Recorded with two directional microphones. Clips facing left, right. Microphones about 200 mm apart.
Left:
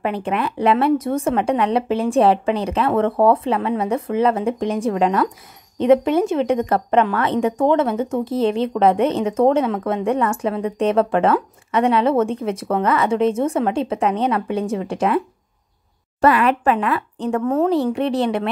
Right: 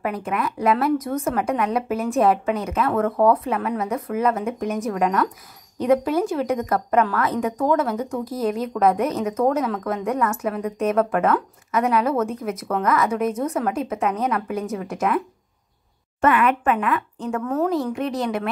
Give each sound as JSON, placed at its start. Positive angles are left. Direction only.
{"t": 0.0, "sound": "a woman's voice", "side_deg": 25}